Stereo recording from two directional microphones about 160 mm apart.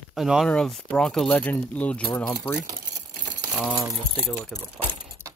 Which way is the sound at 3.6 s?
Centre (ahead or behind).